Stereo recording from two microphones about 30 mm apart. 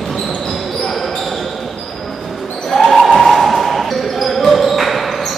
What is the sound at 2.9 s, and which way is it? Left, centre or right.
Basketball bounce, centre.